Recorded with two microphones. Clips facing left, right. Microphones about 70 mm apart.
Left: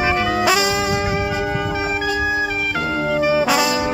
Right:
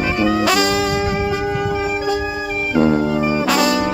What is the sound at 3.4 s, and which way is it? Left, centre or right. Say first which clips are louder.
Brass instrument: right 1 dB; centre.